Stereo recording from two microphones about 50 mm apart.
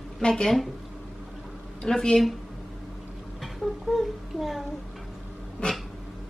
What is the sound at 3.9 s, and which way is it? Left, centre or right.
Speech, centre.